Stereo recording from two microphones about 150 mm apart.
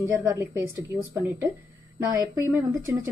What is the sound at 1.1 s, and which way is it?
A woman's voice, 15° right (ahead or behind).